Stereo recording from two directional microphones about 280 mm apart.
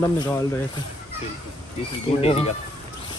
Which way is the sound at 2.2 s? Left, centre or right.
Left.